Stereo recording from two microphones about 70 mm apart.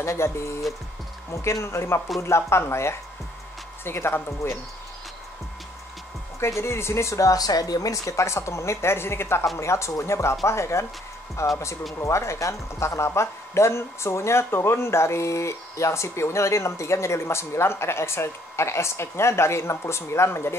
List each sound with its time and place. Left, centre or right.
0.0 s speech: left
6.4 s speech: left